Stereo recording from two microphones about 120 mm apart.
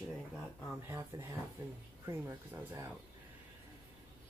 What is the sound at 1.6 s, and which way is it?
Speech, 20° right (ahead or behind).